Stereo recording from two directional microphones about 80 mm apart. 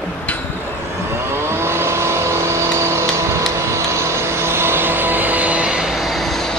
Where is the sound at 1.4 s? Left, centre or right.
Right.